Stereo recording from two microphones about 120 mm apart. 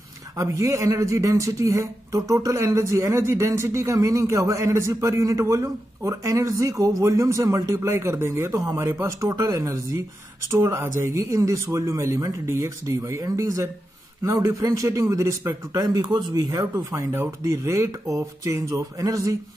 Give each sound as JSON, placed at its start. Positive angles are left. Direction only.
{"t": 0.4, "sound": "speech", "side_deg": -30}